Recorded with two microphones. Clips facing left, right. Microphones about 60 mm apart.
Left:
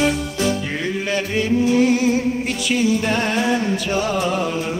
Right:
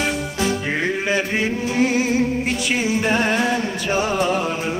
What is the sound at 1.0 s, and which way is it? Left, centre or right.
Music, right.